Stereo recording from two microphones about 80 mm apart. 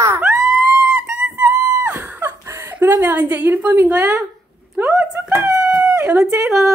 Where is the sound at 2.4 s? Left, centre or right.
Right.